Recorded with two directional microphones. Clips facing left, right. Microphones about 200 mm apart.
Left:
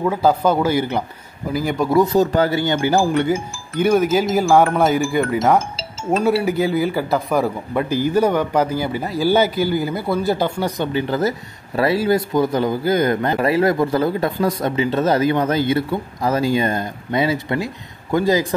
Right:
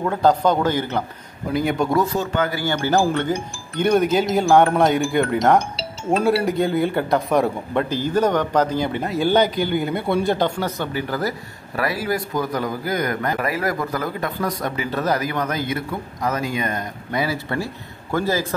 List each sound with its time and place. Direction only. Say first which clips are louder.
0.0 s speech: left 1 dB; 5° left (ahead or behind)
1.5 s speech: left 2 dB; centre (ahead or behind)
2.1 s speech: left 6 dB; 35° left (ahead or behind)
2.6 s speech: left 2 dB; 15° left (ahead or behind)
10.9 s speech: left 5 dB; 25° left (ahead or behind)